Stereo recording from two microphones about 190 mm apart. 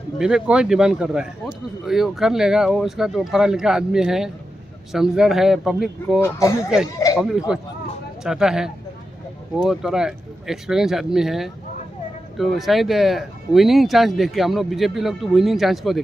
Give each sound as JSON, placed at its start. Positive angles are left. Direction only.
{"t": 0.2, "sound": "speech", "side_deg": -5}
{"t": 6.2, "sound": "speech", "side_deg": 15}
{"t": 7.2, "sound": "speech", "side_deg": -5}